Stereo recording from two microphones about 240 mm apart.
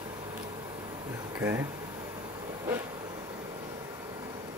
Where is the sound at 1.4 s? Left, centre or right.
Centre.